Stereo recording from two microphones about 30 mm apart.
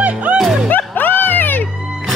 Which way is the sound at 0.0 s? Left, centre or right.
Right.